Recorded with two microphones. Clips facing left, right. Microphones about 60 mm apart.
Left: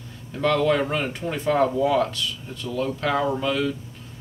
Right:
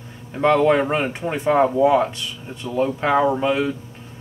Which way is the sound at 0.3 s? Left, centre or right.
Right.